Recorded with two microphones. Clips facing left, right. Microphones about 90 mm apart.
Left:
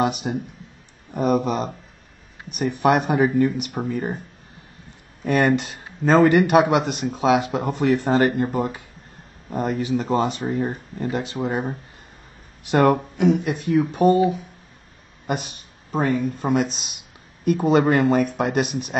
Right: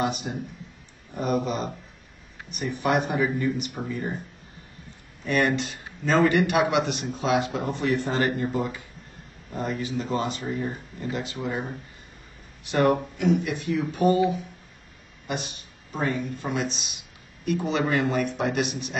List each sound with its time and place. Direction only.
0.2 s speech: 55° left (ahead or behind)
5.2 s speech: 45° left (ahead or behind)
6.5 s speech: 50° left (ahead or behind)
12.7 s speech: 55° left (ahead or behind)
15.2 s speech: 50° left (ahead or behind)